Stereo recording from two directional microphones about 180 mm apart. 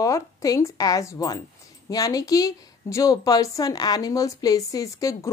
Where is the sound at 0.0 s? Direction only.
20° left (ahead or behind).